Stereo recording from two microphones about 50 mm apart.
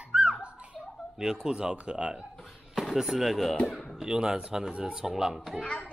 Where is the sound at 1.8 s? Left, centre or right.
Centre.